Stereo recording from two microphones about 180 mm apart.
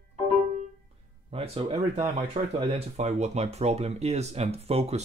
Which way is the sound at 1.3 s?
35° right (ahead or behind).